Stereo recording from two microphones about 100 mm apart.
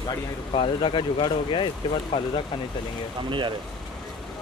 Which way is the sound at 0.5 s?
60° left (ahead or behind).